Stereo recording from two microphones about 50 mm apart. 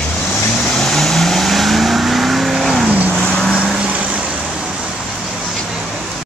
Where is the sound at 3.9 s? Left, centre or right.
Right.